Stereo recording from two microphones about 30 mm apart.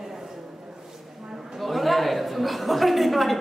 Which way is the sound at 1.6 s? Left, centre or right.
Centre.